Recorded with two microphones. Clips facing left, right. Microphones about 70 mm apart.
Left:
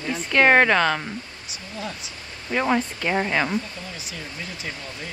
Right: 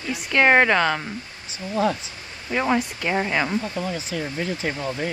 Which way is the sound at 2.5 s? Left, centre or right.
Centre.